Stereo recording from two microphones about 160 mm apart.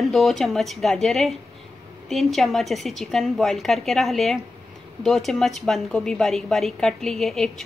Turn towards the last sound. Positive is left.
turn(degrees=0)  # may be behind; listen again after turning